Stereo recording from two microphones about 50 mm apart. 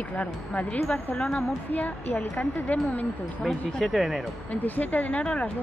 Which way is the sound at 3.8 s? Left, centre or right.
Centre.